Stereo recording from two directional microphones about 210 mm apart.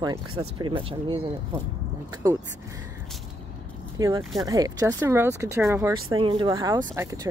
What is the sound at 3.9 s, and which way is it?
Speech, 15° right (ahead or behind).